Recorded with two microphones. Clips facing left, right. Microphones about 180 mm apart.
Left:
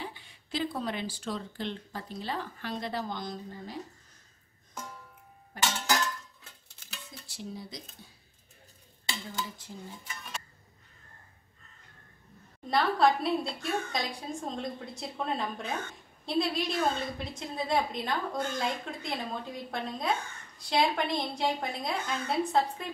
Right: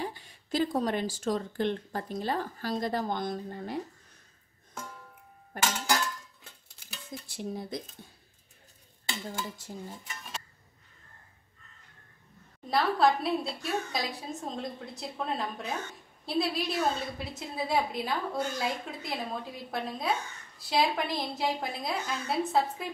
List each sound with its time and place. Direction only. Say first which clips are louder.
0.0 s speech: right 5 dB; 40° right (ahead or behind)
5.6 s a sound: even; 10° right (ahead or behind)
7.2 s speech: right 4 dB; 55° right (ahead or behind)
12.6 s a woman's voice: even; centre (ahead or behind)